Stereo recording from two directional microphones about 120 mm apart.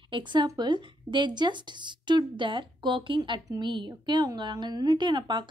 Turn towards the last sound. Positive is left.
turn(degrees=-40)  # may be behind; listen again after turning